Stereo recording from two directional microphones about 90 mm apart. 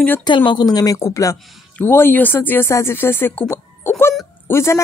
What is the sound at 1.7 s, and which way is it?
Speech, 25° left (ahead or behind).